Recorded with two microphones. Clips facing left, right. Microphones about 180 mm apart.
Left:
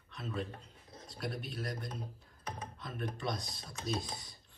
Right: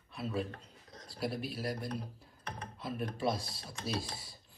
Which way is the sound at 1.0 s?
Centre (ahead or behind).